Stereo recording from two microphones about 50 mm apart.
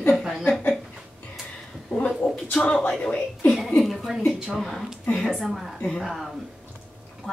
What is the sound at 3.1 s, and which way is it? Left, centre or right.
Speech, left.